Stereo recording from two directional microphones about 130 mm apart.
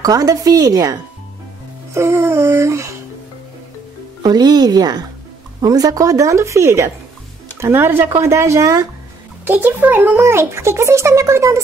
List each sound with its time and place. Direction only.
0.0 s a child's voice: 30° right (ahead or behind)
2.0 s a child's voice: 20° right (ahead or behind)
4.2 s a child's voice: 30° right (ahead or behind)
9.4 s a child's voice: 15° right (ahead or behind)